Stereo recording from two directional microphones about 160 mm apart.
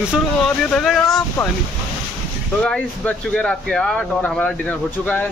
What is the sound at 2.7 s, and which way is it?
Speech, 5° left (ahead or behind).